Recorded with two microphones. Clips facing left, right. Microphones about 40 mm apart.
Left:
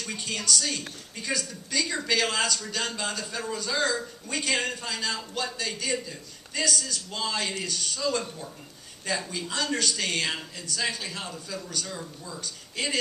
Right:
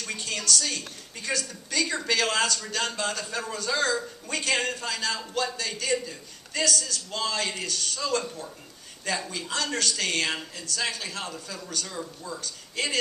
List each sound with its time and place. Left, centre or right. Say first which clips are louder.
0.2 s a woman's voice: even; centre
3.2 s a man's voice: even; centre
9.5 s a woman's voice: even; centre